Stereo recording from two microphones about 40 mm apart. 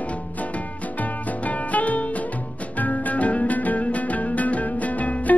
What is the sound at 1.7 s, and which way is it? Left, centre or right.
Music, left.